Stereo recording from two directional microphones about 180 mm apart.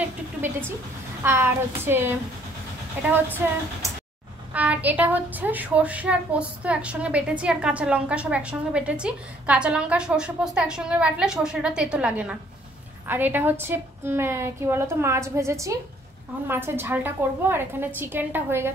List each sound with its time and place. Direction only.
0.0 s vehicle: 10° right (ahead or behind)
1.2 s a woman's voice: 15° right (ahead or behind)
3.3 s a woman's voice: 10° right (ahead or behind)